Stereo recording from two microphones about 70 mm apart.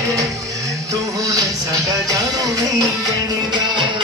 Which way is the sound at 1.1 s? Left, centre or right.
Right.